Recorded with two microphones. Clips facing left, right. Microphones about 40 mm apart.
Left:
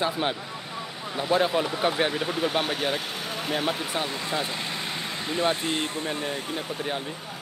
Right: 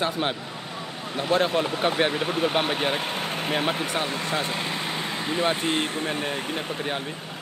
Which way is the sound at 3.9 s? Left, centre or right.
Centre.